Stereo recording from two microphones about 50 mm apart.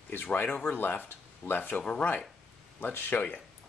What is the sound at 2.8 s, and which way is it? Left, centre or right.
Speech, left.